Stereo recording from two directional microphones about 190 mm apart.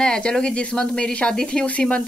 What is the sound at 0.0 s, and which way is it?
Speech, 5° left (ahead or behind).